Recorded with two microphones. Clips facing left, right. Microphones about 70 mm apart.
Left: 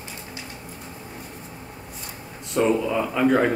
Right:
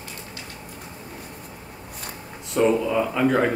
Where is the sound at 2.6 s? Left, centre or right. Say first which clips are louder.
Right 1 dB; centre.